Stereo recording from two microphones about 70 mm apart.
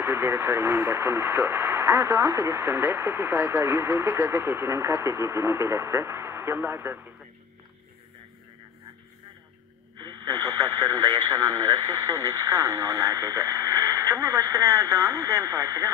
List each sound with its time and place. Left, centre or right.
0.0 s speech: right
9.9 s radio: right
12.1 s radio: right
14.1 s speech: right